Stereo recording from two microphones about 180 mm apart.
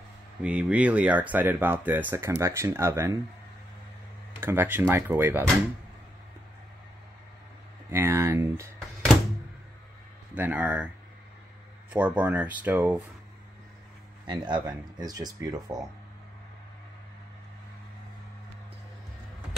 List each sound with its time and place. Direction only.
0.4 s speech: 5° right (ahead or behind)
4.4 s speech: 10° right (ahead or behind)
7.9 s speech: 15° right (ahead or behind)
10.3 s speech: 10° right (ahead or behind)
11.9 s speech: 10° right (ahead or behind)
14.2 s speech: 25° right (ahead or behind)